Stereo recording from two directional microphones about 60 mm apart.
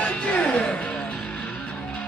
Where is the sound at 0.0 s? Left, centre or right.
Left.